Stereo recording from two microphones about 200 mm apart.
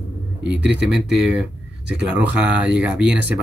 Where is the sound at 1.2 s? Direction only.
5° right (ahead or behind).